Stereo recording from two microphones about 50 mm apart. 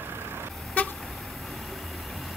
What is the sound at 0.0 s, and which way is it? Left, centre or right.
Vehicle, right.